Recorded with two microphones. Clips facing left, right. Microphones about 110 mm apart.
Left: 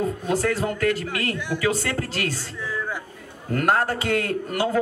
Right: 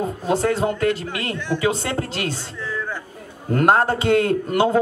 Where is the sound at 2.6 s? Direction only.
10° left (ahead or behind).